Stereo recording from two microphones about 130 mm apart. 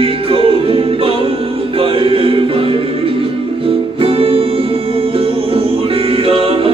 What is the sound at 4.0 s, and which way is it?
Music, 45° right (ahead or behind).